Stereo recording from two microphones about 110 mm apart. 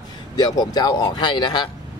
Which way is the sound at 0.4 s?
35° left (ahead or behind).